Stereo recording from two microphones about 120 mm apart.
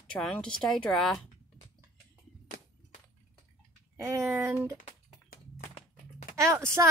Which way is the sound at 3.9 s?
25° right (ahead or behind).